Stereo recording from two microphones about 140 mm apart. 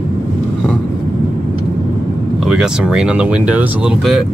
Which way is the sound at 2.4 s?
5° right (ahead or behind).